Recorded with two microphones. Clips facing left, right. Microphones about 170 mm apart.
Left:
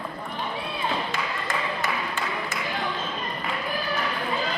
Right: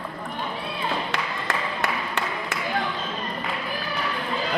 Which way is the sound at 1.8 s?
70° right (ahead or behind).